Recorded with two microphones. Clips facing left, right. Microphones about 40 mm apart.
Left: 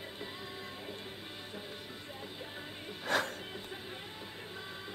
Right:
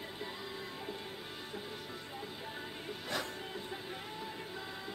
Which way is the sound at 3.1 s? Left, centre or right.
Left.